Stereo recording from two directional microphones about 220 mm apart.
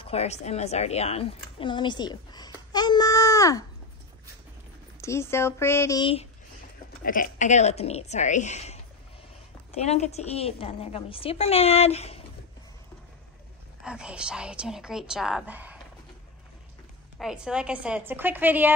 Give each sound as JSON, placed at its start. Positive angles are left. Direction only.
{"t": 0.0, "sound": "a woman's voice", "side_deg": 30}
{"t": 5.0, "sound": "speech", "side_deg": 10}
{"t": 7.0, "sound": "a woman's voice", "side_deg": 40}
{"t": 13.8, "sound": "a woman's voice", "side_deg": -5}
{"t": 17.2, "sound": "a woman's voice", "side_deg": -5}